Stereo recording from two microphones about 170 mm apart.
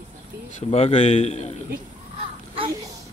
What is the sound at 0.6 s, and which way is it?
Speech, 35° left (ahead or behind).